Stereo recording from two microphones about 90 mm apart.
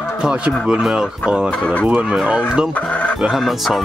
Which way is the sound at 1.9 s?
15° right (ahead or behind).